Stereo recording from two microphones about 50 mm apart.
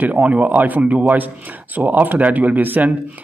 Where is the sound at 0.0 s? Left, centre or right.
Right.